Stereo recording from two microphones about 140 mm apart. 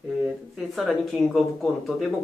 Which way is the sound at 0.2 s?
Centre (ahead or behind).